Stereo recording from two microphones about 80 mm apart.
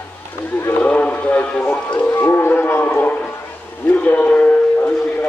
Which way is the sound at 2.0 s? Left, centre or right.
Left.